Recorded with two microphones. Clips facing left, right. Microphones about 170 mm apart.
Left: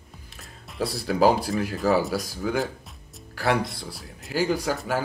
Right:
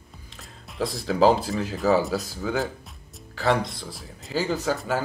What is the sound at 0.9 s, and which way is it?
Speech, 10° left (ahead or behind).